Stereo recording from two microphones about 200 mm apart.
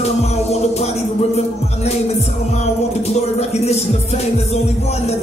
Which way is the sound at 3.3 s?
30° left (ahead or behind).